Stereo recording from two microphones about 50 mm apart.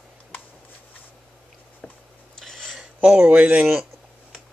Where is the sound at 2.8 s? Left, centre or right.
Right.